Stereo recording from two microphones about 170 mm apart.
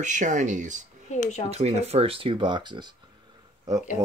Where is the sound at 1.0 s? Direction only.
45° left (ahead or behind).